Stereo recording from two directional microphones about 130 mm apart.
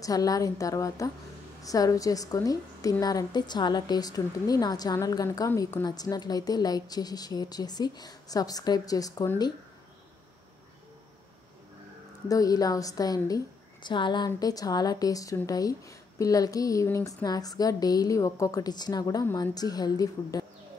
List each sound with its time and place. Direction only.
0.0 s speech: 30° left (ahead or behind)
12.3 s speech: 30° left (ahead or behind)